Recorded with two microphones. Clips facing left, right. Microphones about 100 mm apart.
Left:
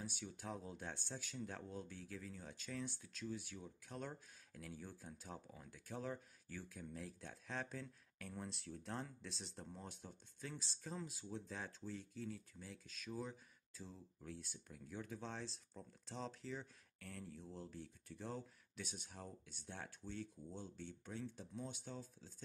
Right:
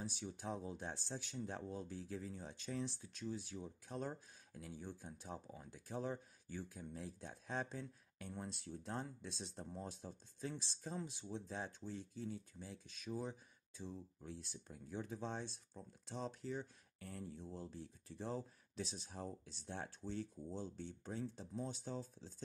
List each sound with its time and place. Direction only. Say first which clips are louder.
0.0 s speech: right 3 dB; 25° right (ahead or behind)
16.2 s speech: right 3 dB; 10° right (ahead or behind)
17.0 s speech: right 3 dB; 25° right (ahead or behind)
20.0 s speech: right 4 dB; 40° right (ahead or behind)